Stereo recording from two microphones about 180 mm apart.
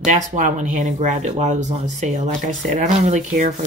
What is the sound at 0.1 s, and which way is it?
Speech, 45° right (ahead or behind).